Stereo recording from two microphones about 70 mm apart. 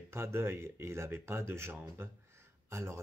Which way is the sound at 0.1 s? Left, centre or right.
Right.